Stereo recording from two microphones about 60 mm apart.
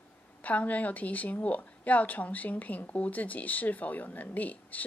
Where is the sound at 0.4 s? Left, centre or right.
Left.